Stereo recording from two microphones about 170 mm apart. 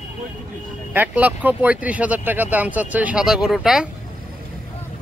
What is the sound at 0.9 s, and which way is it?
Speech, 10° right (ahead or behind).